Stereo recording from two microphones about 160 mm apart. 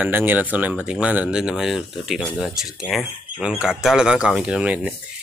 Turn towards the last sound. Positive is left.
turn(degrees=-10)  # may be behind; listen again after turning